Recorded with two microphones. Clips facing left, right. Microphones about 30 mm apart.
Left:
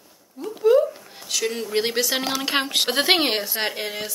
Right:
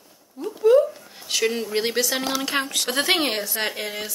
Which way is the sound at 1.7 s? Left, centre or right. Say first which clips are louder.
Left 1 dB; centre.